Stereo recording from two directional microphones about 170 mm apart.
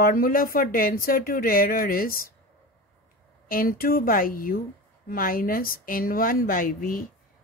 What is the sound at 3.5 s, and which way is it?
A woman's voice, 60° left (ahead or behind).